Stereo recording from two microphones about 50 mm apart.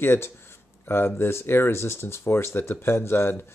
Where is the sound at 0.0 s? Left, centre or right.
Left.